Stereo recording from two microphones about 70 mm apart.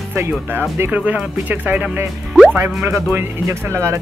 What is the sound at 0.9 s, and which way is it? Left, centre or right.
Speech, right.